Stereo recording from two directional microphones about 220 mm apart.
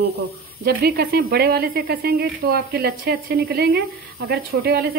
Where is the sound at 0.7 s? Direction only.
45° right (ahead or behind).